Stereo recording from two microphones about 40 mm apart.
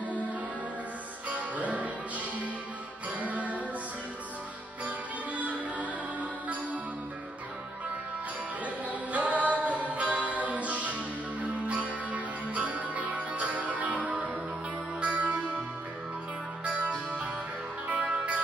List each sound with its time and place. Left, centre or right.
1.3 s music: right
4.8 s music: right
8.6 s music: right
14.1 s music: right
15.0 s music: right
17.8 s music: right